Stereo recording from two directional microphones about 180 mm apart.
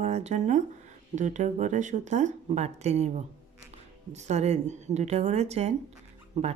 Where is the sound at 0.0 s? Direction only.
40° right (ahead or behind).